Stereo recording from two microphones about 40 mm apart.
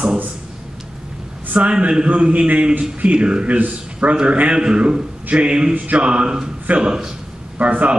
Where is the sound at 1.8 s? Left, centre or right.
Right.